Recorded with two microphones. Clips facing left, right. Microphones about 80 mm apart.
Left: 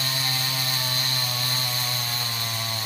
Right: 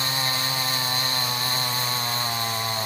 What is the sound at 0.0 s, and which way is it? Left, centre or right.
Chainsaw, right.